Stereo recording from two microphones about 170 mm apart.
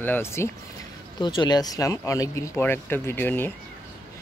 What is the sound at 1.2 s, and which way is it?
Speech, 25° left (ahead or behind).